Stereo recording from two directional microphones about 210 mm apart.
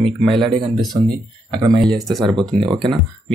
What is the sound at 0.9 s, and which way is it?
Speech, 20° right (ahead or behind).